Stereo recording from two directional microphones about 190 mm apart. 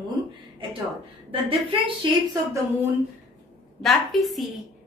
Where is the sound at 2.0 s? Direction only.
25° right (ahead or behind).